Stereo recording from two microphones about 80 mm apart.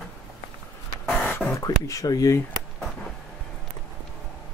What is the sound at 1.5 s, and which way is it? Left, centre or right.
Speech, left.